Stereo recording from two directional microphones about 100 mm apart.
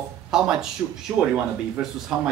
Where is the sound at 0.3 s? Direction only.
5° right (ahead or behind).